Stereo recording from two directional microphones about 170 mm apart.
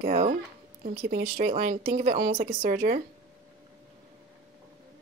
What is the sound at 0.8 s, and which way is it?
Speech, 55° right (ahead or behind).